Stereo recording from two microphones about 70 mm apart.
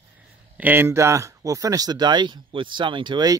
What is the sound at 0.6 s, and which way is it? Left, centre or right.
Speech, right.